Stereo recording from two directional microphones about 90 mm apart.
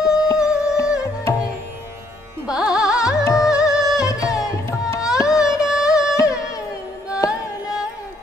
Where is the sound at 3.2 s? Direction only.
40° left (ahead or behind).